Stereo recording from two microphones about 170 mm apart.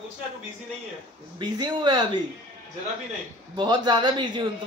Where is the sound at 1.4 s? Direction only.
25° right (ahead or behind).